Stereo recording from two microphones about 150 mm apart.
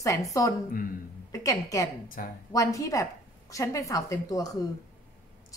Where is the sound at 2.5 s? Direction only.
20° left (ahead or behind).